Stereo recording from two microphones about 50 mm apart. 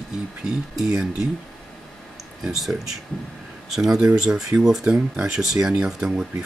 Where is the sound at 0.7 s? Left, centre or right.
Centre.